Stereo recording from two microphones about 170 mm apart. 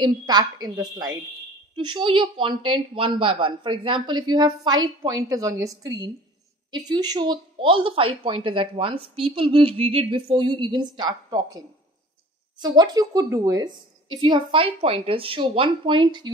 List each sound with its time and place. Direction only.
0.0 s speech: 25° right (ahead or behind)